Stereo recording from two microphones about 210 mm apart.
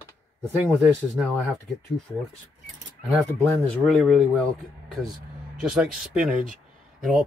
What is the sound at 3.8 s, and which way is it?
Speech, centre (ahead or behind).